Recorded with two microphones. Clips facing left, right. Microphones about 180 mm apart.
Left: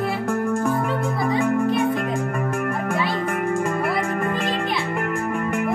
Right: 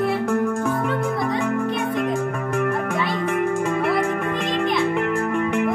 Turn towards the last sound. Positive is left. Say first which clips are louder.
# right 2 dB
turn(degrees=5)  # may be behind; listen again after turning